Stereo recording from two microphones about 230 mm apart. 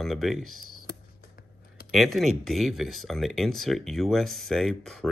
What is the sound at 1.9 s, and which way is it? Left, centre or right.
Speech, centre.